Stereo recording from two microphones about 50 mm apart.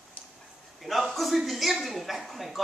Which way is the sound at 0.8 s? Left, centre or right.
Centre.